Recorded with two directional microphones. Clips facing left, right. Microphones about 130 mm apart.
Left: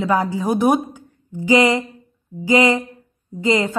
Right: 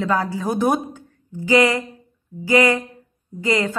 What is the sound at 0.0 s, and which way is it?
A woman's voice, 15° left (ahead or behind).